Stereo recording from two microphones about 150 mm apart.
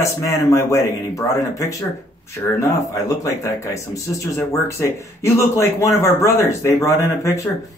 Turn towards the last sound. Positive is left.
turn(degrees=20)  # may be behind; listen again after turning